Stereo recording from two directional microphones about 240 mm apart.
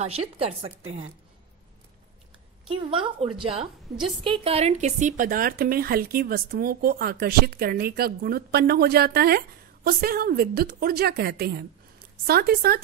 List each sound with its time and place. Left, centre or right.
0.0 s a woman's voice: right
2.7 s a woman's voice: right